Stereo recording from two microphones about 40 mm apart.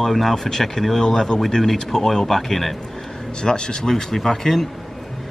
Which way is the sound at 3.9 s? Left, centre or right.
Centre.